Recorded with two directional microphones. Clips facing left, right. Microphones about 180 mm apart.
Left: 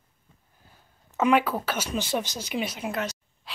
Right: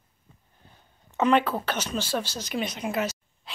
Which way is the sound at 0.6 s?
5° left (ahead or behind).